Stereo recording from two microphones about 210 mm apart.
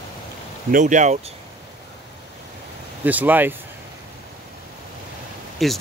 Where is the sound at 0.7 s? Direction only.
40° right (ahead or behind).